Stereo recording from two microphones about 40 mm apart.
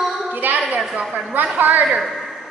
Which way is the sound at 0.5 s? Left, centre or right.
Right.